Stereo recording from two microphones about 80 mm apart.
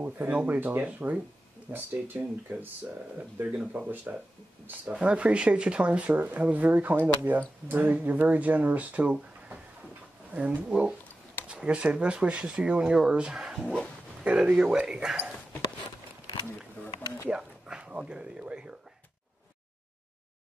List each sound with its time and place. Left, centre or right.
0.0 s speech: right; by 13.6 s centre
13.6 s bow-wow: centre
14.2 s speech: centre
17.3 s a sound: centre